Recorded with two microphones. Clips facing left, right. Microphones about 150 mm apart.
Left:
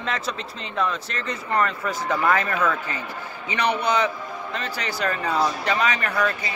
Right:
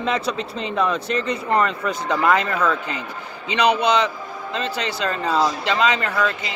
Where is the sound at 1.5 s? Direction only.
20° right (ahead or behind).